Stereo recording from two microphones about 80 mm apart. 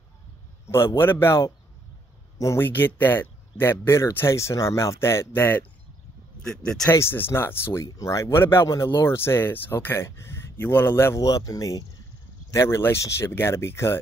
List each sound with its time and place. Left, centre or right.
0.7 s speech: left
2.3 s speech: left
2.6 s speech: left
6.4 s speech: centre
6.9 s speech: left
7.9 s speech: left
8.3 s speech: left
11.1 s speech: left
12.5 s speech: left